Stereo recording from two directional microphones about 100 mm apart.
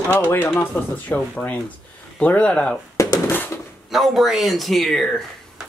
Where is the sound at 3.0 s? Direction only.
35° left (ahead or behind).